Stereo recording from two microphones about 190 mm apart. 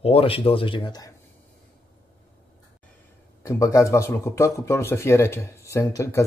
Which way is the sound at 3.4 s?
15° left (ahead or behind).